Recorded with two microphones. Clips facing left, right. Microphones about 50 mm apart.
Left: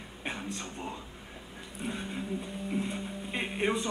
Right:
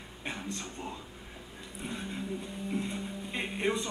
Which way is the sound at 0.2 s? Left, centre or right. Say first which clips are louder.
Left 1 dB; centre.